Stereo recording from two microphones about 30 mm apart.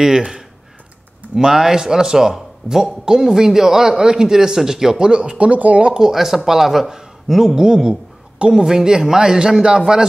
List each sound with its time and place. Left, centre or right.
0.0 s a man's voice: centre
4.9 s speech: right
5.5 s speech: right
6.1 s a man's voice: centre
7.5 s a man's voice: right